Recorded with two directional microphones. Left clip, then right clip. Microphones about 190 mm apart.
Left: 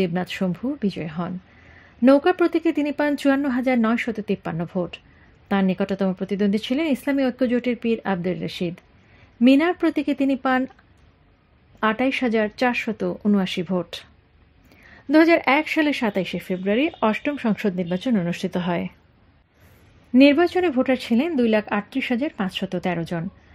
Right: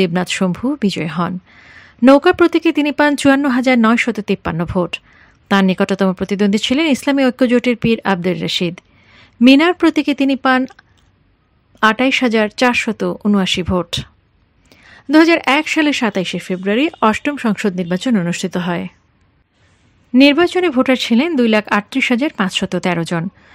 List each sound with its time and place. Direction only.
0.0 s speech: 25° right (ahead or behind)
11.8 s speech: 20° right (ahead or behind)
20.1 s speech: 10° right (ahead or behind); by 23.2 s 30° right (ahead or behind)